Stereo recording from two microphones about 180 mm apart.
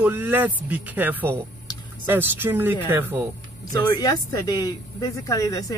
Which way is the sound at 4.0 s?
20° left (ahead or behind).